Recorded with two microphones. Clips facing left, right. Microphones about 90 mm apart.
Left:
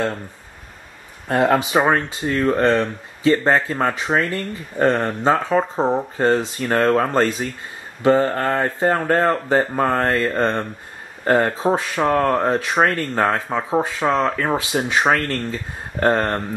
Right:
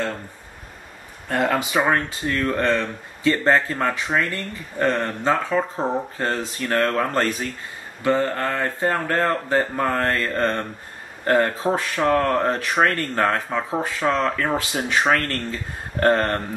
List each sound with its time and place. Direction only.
1.5 s speech: 25° left (ahead or behind)
1.9 s speech: 15° left (ahead or behind)
3.4 s speech: 5° left (ahead or behind)
3.8 s speech: 20° left (ahead or behind); by 16.4 s 5° left (ahead or behind)